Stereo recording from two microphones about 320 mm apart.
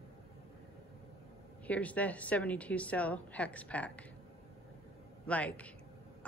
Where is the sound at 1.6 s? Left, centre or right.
Centre.